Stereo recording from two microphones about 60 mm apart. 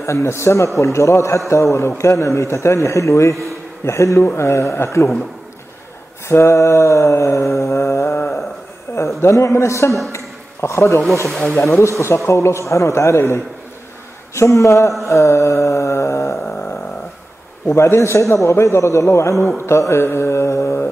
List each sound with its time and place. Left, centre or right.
0.0 s a man's voice: left
6.2 s mantra: left
8.9 s a man's voice: left
10.1 s a sound: left
11.2 s speech: centre
11.8 s a man's voice: left
15.0 s a sound: left
17.6 s a man's voice: left